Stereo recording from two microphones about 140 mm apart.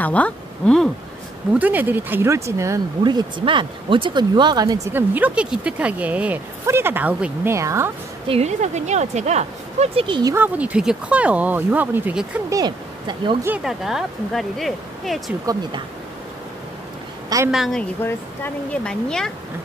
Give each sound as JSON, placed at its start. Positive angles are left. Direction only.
{"t": 0.0, "sound": "speech", "side_deg": 10}
{"t": 1.5, "sound": "speech", "side_deg": -10}
{"t": 3.0, "sound": "speech", "side_deg": -35}
{"t": 4.9, "sound": "speech", "side_deg": -10}
{"t": 7.5, "sound": "speech", "side_deg": -20}
{"t": 8.3, "sound": "speech", "side_deg": -50}
{"t": 10.0, "sound": "speech", "side_deg": -35}
{"t": 10.3, "sound": "speech", "side_deg": -10}
{"t": 12.4, "sound": "speech", "side_deg": -30}
{"t": 13.7, "sound": "speech", "side_deg": 0}
{"t": 17.5, "sound": "speech", "side_deg": 0}
{"t": 18.0, "sound": "speech", "side_deg": 10}